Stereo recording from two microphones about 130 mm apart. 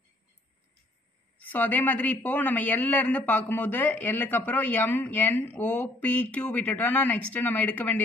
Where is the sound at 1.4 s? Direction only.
15° left (ahead or behind).